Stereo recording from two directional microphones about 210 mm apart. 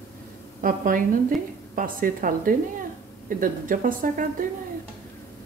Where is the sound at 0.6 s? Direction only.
40° right (ahead or behind).